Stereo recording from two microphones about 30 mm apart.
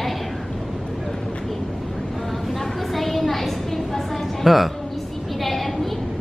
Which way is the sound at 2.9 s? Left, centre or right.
Centre.